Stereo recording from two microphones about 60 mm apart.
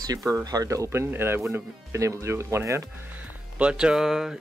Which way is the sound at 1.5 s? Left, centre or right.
Right.